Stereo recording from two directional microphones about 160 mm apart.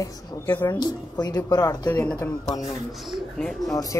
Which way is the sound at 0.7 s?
25° left (ahead or behind).